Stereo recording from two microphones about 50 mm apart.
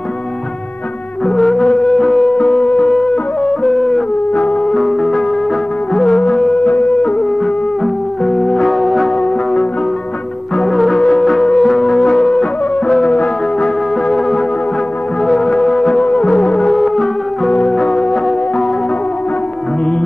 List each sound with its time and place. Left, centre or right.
1.2 s music: centre
2.3 s music: centre
4.3 s music: left
4.6 s music: centre
5.9 s music: centre
6.8 s music: centre
7.8 s music: centre
9.2 s music: centre
10.5 s music: centre